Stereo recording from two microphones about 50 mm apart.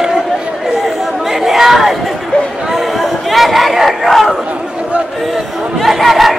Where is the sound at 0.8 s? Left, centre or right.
Centre.